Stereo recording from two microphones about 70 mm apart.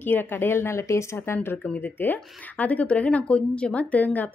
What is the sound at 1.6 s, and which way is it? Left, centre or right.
A woman's voice, left.